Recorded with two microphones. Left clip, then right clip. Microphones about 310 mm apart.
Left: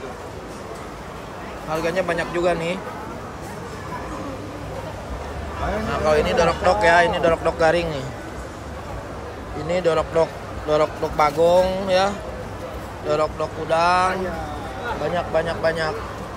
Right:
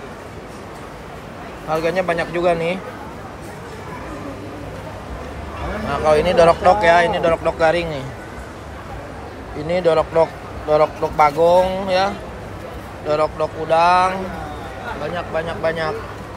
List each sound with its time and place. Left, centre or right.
1.7 s speech: centre
5.9 s speech: centre
9.7 s speech: centre
15.1 s speech: centre